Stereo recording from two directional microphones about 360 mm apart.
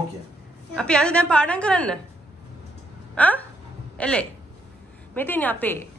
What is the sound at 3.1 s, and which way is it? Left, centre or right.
A woman's voice, centre.